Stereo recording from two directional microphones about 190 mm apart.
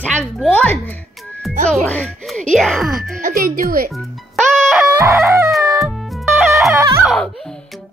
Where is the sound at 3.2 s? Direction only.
50° right (ahead or behind).